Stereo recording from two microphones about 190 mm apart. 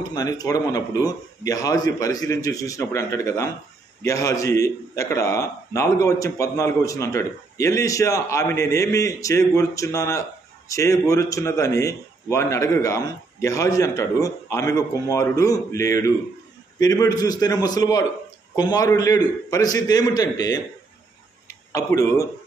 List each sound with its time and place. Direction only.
0.1 s a man's voice: 20° left (ahead or behind)